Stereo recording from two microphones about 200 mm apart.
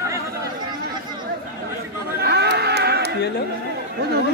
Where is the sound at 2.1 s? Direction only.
55° right (ahead or behind).